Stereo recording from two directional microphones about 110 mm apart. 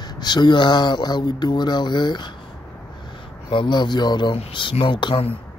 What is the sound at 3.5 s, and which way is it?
Speech, 45° left (ahead or behind).